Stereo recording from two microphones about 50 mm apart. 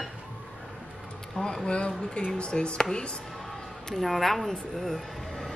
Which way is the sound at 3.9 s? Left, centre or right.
Centre.